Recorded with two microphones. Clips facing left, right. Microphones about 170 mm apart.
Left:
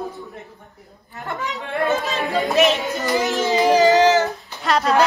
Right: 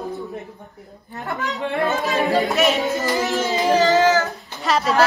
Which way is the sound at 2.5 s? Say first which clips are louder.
Left 1 dB; 20° left (ahead or behind).